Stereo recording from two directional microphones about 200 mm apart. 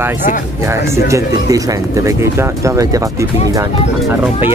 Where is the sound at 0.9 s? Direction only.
15° right (ahead or behind).